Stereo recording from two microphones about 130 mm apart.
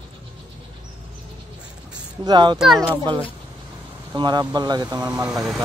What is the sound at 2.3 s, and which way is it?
Speech, 35° right (ahead or behind).